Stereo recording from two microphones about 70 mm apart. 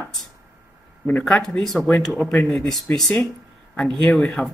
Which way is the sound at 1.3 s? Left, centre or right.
Centre.